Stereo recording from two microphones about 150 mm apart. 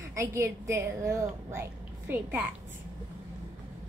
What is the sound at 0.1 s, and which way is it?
A woman's voice, 20° right (ahead or behind).